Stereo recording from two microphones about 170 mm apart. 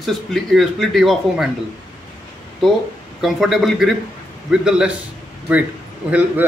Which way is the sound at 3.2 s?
Centre (ahead or behind).